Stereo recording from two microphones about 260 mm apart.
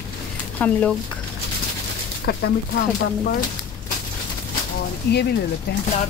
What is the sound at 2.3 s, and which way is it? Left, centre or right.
Speech, left.